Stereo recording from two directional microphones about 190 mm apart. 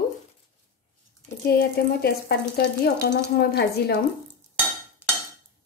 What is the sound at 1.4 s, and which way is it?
Speech, 55° left (ahead or behind).